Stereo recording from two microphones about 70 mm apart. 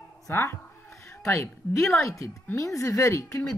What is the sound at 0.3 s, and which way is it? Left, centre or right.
Speech, left.